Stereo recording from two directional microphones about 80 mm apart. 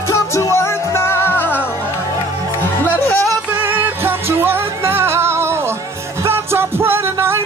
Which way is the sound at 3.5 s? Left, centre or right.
Right.